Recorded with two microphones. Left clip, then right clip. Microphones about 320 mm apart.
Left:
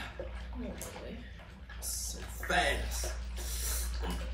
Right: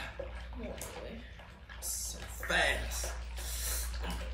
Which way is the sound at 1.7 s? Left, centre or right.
Centre.